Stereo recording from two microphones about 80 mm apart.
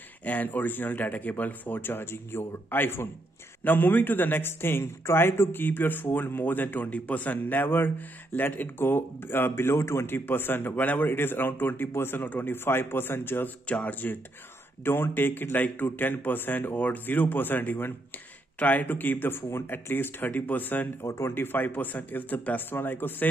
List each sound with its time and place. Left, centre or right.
0.2 s speech: left
13.7 s speech: centre